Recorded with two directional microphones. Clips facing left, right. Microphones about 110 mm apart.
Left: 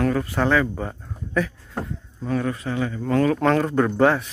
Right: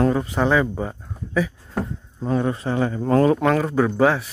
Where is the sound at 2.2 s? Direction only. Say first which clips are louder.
Right 3 dB; 25° right (ahead or behind).